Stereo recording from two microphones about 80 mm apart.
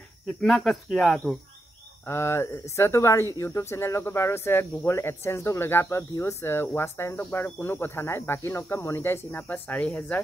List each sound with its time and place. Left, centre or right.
0.5 s speech: centre
2.0 s speech: left